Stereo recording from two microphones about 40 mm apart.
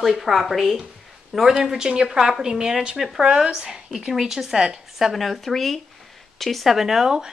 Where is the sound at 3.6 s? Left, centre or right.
Centre.